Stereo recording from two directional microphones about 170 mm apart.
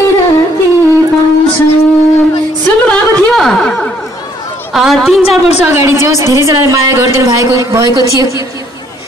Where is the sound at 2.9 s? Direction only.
Centre (ahead or behind).